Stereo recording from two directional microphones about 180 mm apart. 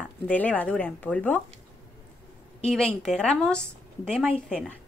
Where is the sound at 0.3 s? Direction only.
10° left (ahead or behind).